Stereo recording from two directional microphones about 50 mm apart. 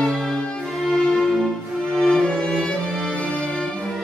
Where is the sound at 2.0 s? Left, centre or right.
Centre.